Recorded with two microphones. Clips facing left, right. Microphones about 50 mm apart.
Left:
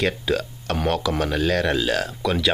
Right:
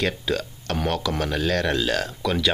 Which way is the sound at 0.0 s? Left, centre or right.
Centre.